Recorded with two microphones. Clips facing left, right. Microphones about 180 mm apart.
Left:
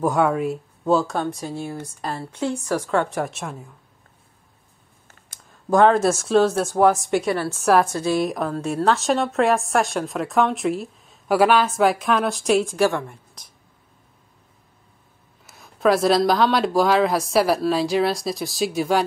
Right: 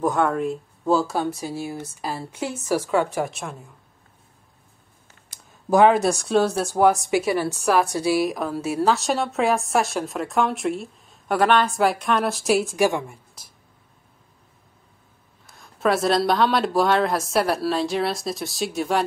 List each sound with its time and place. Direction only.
0.0 s a woman's voice: 5° left (ahead or behind)
5.7 s a woman's voice: 5° right (ahead or behind)
15.4 s a woman's voice: 5° left (ahead or behind)